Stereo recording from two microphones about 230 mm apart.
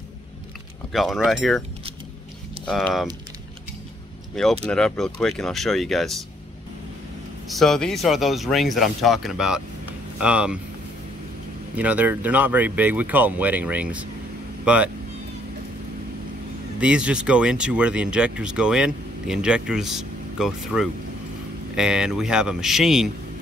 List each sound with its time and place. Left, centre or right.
0.9 s speech: centre
2.6 s speech: centre
4.6 s speech: centre
7.4 s speech: centre
11.7 s speech: centre
16.8 s speech: centre